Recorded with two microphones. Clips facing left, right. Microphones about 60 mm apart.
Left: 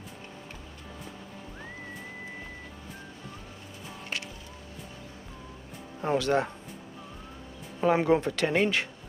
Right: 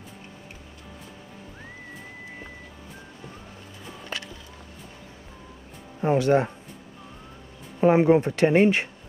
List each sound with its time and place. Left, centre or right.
5.9 s speech: right
7.8 s speech: right